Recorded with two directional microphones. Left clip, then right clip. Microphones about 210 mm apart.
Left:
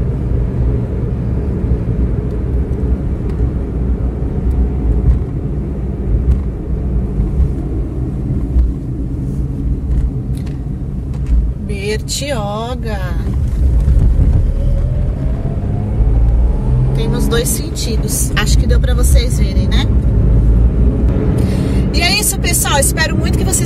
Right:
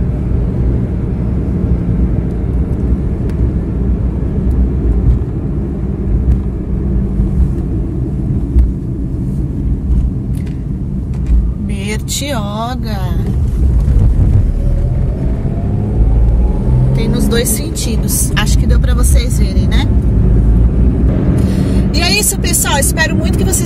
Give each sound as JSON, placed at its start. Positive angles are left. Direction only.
{"t": 16.9, "sound": "speech", "side_deg": 10}
{"t": 21.7, "sound": "speech", "side_deg": 0}